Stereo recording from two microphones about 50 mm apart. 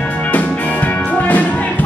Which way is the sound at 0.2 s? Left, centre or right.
Left.